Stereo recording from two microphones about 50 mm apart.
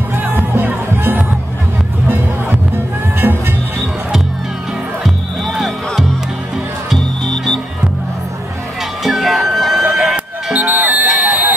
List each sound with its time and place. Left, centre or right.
0.1 s music: right
3.2 s music: right
5.0 s music: centre
9.0 s music: centre
10.1 s music: right